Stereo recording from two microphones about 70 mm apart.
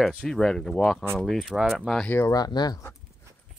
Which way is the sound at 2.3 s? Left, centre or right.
Left.